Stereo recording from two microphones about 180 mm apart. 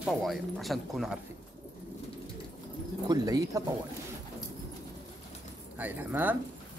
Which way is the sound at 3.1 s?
20° right (ahead or behind).